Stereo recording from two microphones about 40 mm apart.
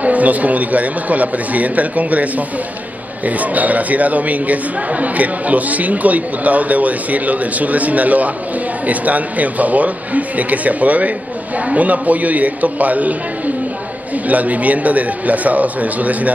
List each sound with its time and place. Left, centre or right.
0.0 s speech: right
14.1 s speech: right